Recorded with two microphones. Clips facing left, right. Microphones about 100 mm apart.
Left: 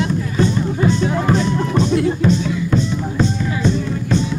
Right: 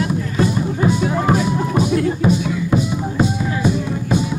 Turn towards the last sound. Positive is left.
turn(degrees=-10)  # may be behind; listen again after turning